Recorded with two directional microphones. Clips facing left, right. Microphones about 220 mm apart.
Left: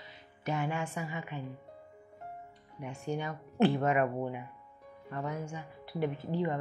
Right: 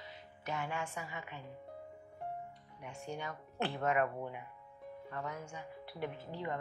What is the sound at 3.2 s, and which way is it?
A woman's voice, 15° left (ahead or behind).